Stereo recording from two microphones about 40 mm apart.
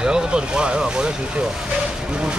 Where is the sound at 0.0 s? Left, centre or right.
Right.